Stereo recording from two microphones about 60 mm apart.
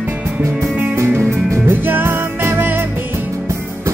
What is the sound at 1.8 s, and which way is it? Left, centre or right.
Music, right.